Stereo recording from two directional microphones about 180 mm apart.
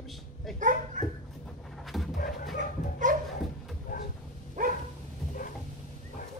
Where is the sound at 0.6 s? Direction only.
45° right (ahead or behind).